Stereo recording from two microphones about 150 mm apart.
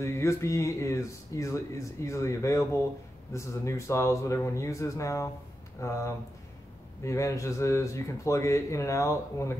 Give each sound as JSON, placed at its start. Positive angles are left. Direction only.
{"t": 0.0, "sound": "speech", "side_deg": 20}